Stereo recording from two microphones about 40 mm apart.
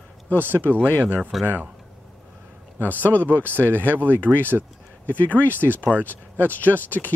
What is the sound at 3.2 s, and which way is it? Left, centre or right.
Speech, right.